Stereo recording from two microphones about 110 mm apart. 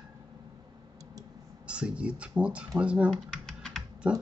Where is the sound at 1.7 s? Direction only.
10° right (ahead or behind).